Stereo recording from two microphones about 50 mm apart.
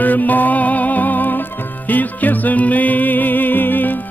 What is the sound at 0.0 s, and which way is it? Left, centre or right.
Music, left.